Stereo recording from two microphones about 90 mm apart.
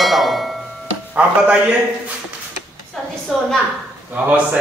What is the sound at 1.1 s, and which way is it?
Speech, 15° right (ahead or behind).